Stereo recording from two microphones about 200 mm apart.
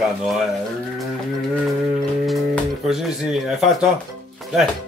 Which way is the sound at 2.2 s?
Centre (ahead or behind).